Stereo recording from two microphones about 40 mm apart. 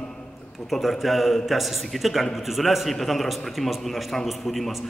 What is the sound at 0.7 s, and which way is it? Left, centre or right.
A man's voice, centre.